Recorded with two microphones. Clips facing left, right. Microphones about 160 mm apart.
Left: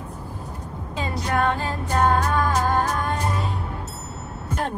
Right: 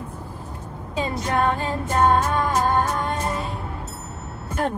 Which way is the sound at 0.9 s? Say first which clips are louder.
Right 1 dB; 20° right (ahead or behind).